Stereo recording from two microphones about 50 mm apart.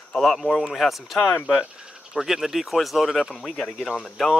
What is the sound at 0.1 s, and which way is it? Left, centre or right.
Speech, centre.